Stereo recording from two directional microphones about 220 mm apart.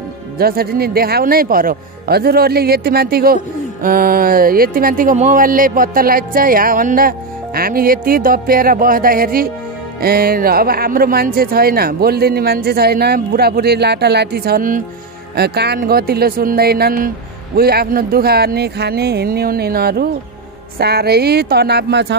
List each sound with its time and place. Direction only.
0.4 s speech: 45° right (ahead or behind)